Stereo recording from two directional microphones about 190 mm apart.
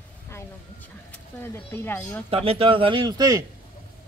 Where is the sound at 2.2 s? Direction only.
30° right (ahead or behind).